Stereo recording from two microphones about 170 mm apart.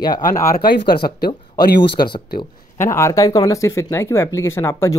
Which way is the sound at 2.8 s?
15° left (ahead or behind).